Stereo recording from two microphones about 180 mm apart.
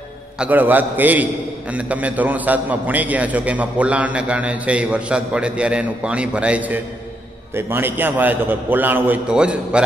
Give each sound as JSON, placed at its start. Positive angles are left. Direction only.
{"t": 0.4, "sound": "a man's voice", "side_deg": -10}